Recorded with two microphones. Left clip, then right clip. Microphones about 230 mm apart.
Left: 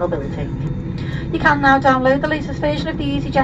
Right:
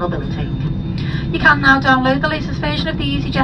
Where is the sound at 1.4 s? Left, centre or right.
Right.